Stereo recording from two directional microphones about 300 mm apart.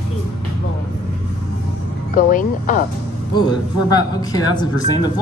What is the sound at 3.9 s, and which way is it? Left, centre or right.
Speech, centre.